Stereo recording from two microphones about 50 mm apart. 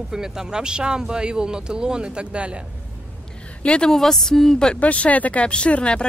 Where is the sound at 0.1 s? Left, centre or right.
Centre.